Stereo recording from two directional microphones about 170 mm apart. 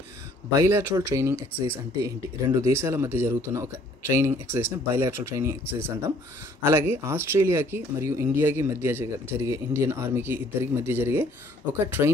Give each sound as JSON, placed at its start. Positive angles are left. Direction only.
{"t": 0.6, "sound": "speech", "side_deg": -15}